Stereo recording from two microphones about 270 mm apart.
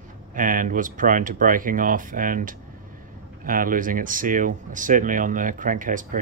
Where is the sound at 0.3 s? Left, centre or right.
Right.